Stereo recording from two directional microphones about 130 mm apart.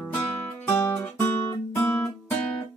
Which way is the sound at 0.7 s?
15° left (ahead or behind).